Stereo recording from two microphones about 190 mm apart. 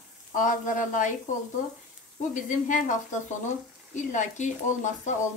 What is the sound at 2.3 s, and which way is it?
A woman's voice, 40° left (ahead or behind).